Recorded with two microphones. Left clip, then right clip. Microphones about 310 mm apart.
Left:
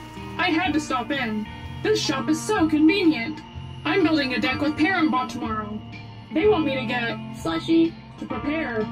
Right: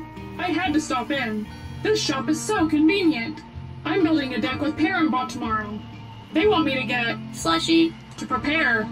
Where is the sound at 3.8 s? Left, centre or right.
Centre.